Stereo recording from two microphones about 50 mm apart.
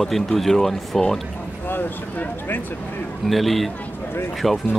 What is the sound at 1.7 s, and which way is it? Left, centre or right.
Speech, left.